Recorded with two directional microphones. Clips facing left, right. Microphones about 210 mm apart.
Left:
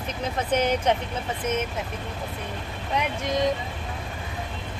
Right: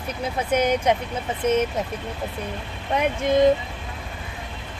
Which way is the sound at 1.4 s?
30° right (ahead or behind).